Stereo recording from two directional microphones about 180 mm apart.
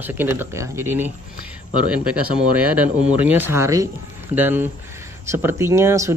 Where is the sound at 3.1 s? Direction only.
10° right (ahead or behind).